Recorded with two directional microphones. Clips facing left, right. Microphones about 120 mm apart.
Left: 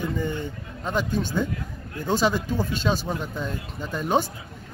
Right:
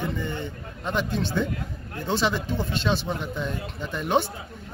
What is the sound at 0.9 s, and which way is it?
Speech, 45° left (ahead or behind).